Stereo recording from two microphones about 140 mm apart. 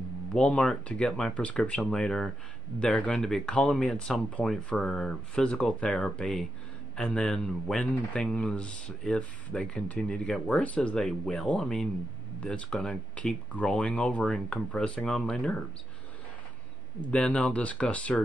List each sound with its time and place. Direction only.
0.3 s speech: 10° left (ahead or behind)
17.0 s speech: 10° left (ahead or behind)